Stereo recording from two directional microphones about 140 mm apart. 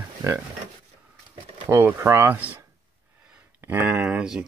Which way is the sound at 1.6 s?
20° right (ahead or behind).